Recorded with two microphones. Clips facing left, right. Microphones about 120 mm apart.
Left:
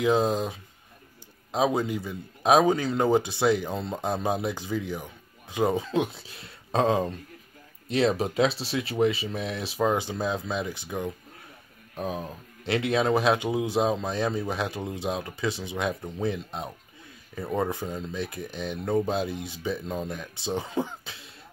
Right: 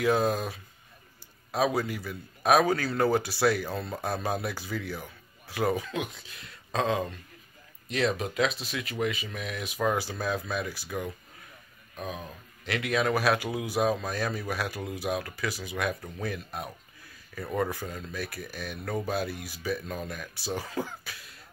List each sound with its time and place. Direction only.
0.0 s speech: 20° left (ahead or behind)
11.9 s speech: 30° left (ahead or behind)